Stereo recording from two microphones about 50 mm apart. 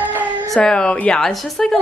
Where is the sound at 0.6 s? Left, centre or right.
Centre.